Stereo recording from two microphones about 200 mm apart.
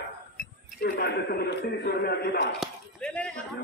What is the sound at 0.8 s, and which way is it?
A man's voice, 55° left (ahead or behind).